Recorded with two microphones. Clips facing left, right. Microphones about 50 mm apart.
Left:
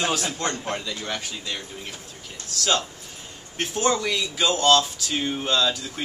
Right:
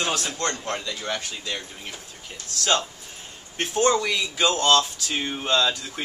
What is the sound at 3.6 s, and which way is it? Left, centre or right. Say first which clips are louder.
Speech: right 2 dB; centre.